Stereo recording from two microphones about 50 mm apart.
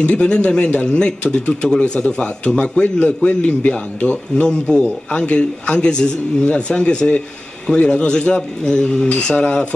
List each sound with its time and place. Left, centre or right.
0.0 s a man's voice: left